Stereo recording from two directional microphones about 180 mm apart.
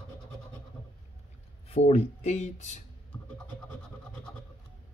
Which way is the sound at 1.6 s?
35° left (ahead or behind).